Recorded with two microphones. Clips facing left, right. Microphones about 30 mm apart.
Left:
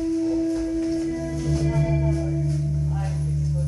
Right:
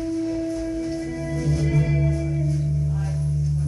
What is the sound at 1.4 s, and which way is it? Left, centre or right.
Music, right.